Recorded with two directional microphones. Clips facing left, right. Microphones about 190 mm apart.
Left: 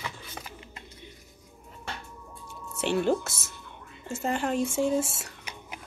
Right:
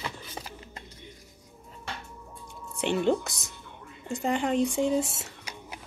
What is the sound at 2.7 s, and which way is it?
Speech, 15° right (ahead or behind).